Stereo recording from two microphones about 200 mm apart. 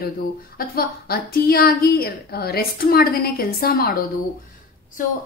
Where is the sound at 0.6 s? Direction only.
50° left (ahead or behind).